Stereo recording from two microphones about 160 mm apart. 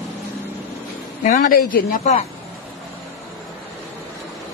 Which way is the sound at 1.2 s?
55° left (ahead or behind).